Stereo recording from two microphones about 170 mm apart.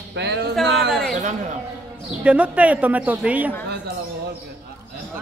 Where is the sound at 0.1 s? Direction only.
90° right.